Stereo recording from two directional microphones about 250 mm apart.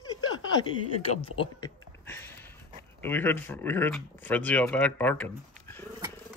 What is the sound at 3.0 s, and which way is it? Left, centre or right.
Speech, centre.